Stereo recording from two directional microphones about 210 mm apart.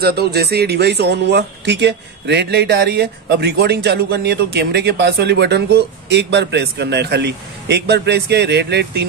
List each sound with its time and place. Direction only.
0.0 s speech: 50° right (ahead or behind)